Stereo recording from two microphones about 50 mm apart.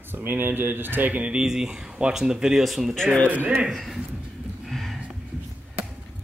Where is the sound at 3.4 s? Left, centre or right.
Centre.